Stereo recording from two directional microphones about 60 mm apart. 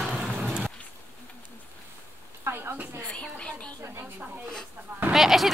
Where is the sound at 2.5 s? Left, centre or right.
Right.